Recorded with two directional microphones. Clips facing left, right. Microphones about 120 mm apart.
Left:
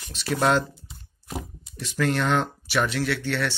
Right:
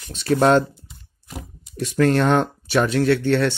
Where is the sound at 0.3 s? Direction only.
40° right (ahead or behind).